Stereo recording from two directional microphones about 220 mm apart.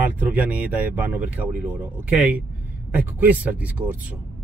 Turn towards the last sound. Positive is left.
turn(degrees=-5)  # may be behind; listen again after turning